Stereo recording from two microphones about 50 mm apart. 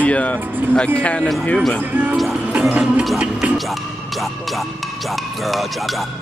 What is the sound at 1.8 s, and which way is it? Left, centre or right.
Speech, right.